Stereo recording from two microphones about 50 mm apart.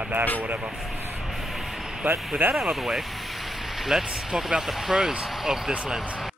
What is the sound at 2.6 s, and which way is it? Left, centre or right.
Speech, centre.